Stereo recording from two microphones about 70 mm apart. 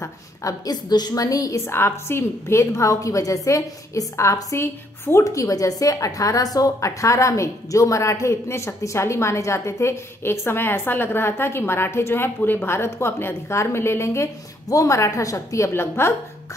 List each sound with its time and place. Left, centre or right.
0.0 s a woman's voice: left
1.7 s a woman's voice: left